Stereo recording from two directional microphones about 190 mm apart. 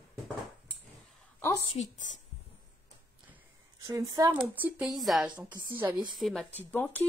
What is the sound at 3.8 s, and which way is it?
A woman's voice, 20° right (ahead or behind).